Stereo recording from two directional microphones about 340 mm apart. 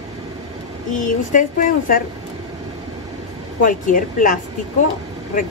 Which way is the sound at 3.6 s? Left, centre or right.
Left.